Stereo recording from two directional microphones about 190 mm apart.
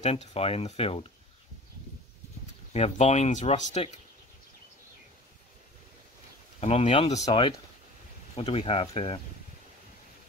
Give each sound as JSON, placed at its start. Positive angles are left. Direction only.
{"t": 0.0, "sound": "speech", "side_deg": 30}
{"t": 2.7, "sound": "speech", "side_deg": 35}
{"t": 6.6, "sound": "speech", "side_deg": 35}